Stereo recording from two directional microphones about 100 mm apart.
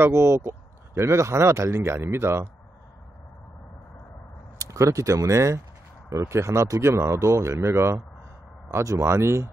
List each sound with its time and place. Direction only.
0.0 s speech: 25° right (ahead or behind)
4.6 s speech: 30° right (ahead or behind)